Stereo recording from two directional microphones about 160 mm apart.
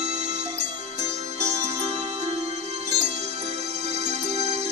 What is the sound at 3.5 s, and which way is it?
Music, 40° right (ahead or behind).